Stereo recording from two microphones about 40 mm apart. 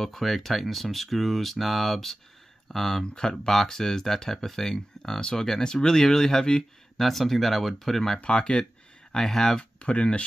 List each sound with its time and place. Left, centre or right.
0.0 s speech: centre
7.0 s speech: centre
8.2 s speech: left
9.1 s speech: centre
9.6 s speech: left